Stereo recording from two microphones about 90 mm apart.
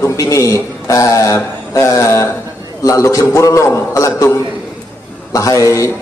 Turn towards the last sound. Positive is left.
turn(degrees=35)  # may be behind; listen again after turning